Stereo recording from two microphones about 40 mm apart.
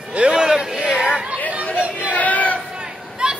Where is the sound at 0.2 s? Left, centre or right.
Centre.